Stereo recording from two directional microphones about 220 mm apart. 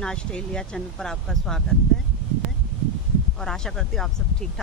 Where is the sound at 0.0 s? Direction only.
5° left (ahead or behind).